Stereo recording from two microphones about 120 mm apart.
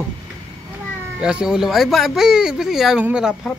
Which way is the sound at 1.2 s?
5° right (ahead or behind).